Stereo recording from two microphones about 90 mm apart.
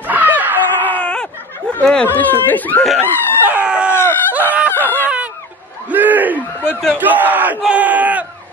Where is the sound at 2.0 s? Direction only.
20° left (ahead or behind).